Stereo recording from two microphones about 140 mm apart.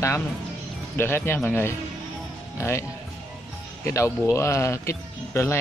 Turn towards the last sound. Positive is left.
turn(degrees=20)  # may be behind; listen again after turning